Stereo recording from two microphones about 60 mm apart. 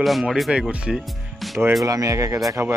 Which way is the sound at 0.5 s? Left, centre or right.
Centre.